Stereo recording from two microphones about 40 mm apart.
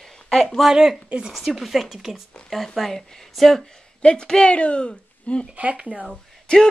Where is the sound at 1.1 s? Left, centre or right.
Right.